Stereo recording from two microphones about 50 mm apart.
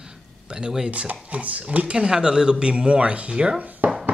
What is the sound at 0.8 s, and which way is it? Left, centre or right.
Speech, right.